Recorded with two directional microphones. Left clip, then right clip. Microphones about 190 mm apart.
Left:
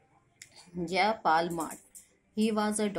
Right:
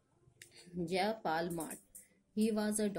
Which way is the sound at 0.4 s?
45° right (ahead or behind).